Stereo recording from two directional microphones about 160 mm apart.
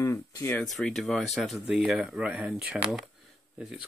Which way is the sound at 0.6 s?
5° left (ahead or behind).